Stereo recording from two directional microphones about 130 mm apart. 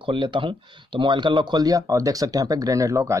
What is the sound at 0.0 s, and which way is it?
Speech, 40° right (ahead or behind).